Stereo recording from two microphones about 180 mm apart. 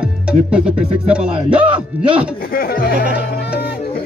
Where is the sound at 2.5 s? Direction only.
55° left (ahead or behind).